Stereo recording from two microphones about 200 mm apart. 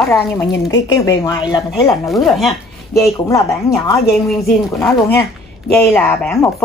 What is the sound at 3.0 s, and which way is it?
Speech, 15° left (ahead or behind).